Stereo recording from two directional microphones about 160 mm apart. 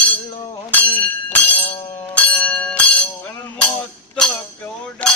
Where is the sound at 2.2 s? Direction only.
5° left (ahead or behind).